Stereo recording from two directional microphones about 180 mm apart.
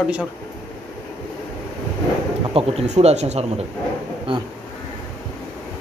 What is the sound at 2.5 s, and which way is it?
Speech, 35° right (ahead or behind).